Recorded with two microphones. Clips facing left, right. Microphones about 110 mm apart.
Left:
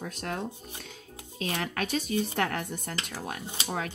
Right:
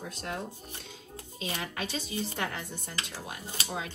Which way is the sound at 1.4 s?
55° left (ahead or behind).